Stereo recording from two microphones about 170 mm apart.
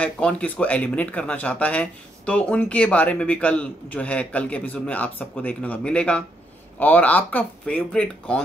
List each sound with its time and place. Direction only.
0.0 s speech: 5° left (ahead or behind)